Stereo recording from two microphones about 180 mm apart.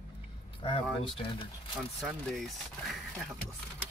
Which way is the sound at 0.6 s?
30° left (ahead or behind).